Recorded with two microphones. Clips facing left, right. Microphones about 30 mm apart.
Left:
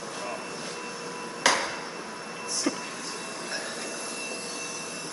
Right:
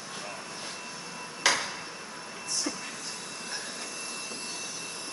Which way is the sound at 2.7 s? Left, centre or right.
Left.